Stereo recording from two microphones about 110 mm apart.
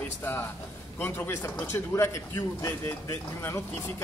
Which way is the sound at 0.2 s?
20° left (ahead or behind).